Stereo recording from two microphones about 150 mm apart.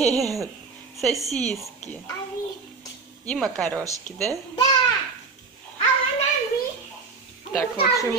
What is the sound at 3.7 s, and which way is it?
Speech, 20° right (ahead or behind).